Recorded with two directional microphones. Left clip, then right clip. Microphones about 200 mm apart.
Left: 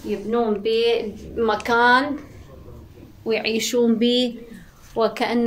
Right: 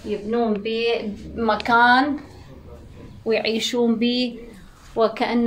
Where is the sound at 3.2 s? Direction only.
10° left (ahead or behind).